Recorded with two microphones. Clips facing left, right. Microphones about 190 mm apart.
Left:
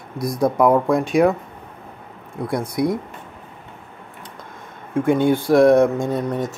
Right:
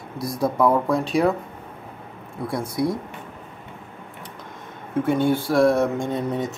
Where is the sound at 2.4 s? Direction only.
20° left (ahead or behind).